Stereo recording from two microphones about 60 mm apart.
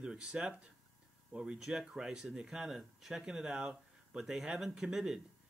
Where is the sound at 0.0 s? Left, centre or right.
Centre.